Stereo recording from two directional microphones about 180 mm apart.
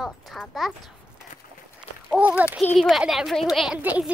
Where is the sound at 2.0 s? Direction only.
5° right (ahead or behind).